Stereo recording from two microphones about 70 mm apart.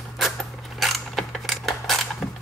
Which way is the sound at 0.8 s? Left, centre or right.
Centre.